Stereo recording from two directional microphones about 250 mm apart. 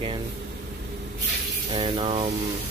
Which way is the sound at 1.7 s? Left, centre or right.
Right.